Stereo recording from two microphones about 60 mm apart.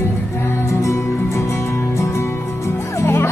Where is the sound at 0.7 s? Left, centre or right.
Left.